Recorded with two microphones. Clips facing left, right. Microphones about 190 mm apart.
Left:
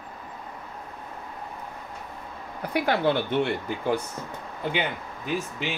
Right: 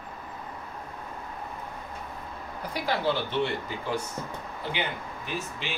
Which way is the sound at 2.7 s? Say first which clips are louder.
Left 5 dB; 55° left (ahead or behind).